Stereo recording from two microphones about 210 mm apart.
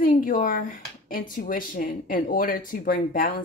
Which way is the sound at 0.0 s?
40° left (ahead or behind).